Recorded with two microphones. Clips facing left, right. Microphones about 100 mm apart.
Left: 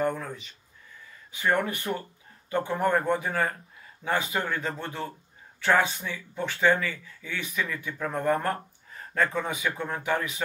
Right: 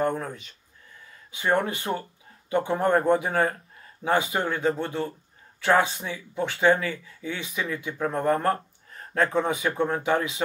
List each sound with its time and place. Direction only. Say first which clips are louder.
1.3 s speech: right 2 dB; 20° right (ahead or behind)